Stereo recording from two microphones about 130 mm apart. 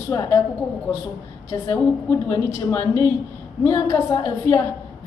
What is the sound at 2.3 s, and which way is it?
A woman's voice, 25° left (ahead or behind).